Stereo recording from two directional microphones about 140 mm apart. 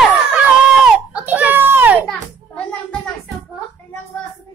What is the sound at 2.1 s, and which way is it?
Children playing, 10° left (ahead or behind).